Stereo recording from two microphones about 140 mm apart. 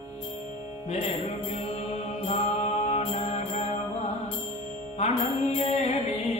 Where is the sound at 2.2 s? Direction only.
50° left (ahead or behind).